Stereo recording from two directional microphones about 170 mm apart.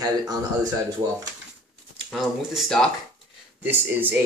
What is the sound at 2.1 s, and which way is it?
Speech, centre (ahead or behind).